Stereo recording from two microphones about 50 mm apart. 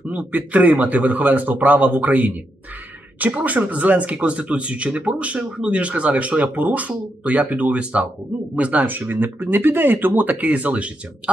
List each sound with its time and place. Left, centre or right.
0.1 s speech: right